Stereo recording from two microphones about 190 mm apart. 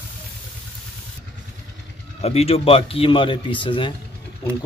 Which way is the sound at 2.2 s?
35° left (ahead or behind).